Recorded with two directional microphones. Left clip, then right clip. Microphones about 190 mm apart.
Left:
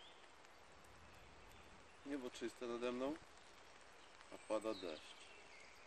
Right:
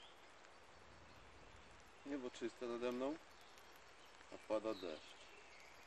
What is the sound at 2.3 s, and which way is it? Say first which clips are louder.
Speech: right 1 dB; 10° left (ahead or behind).